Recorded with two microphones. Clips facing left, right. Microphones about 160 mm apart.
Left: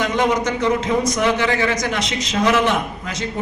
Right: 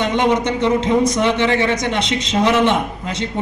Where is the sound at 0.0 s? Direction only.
25° right (ahead or behind).